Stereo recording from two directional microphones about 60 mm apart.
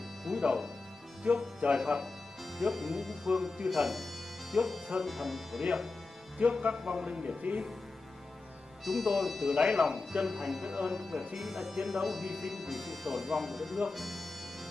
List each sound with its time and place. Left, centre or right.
0.2 s music: centre
1.2 s speech: centre
1.8 s speech: centre
6.3 s speech: centre
8.8 s speech: centre